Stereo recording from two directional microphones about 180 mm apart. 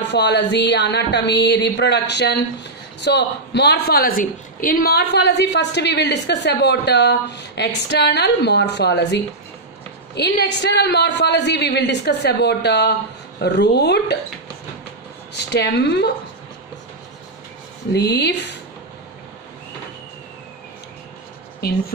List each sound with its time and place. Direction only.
0.0 s a woman's voice: 70° left (ahead or behind)
15.3 s a woman's voice: 70° left (ahead or behind)
17.9 s a woman's voice: 65° left (ahead or behind)